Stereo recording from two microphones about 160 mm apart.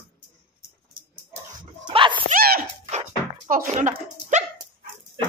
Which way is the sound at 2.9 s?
45° right (ahead or behind).